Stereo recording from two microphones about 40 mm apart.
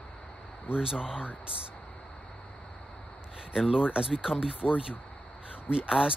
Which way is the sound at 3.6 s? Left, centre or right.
Right.